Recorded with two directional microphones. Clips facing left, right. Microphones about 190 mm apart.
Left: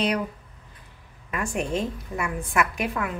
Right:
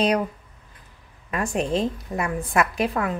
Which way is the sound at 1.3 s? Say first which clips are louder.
Right 3 dB; 35° right (ahead or behind).